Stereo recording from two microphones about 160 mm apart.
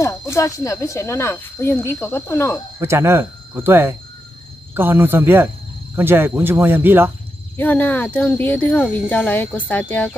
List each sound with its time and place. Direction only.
0.0 s speech: 20° left (ahead or behind)
2.8 s speech: 15° right (ahead or behind)
7.5 s speech: 10° left (ahead or behind)